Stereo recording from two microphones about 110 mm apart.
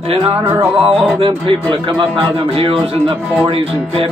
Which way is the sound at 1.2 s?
50° right (ahead or behind).